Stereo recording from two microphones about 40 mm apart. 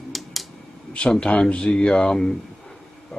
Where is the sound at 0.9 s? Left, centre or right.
Left.